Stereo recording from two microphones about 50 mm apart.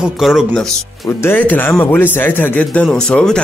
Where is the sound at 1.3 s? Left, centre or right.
Left.